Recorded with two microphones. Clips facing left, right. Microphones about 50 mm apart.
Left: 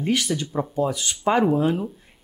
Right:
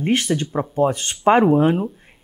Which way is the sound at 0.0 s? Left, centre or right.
Right.